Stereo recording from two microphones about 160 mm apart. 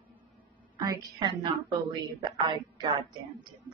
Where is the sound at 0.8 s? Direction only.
20° right (ahead or behind).